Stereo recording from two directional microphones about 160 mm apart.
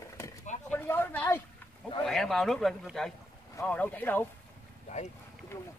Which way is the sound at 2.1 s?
Centre (ahead or behind).